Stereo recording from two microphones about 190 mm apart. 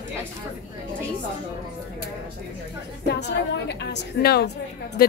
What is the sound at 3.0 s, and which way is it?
A woman's voice, 65° left (ahead or behind).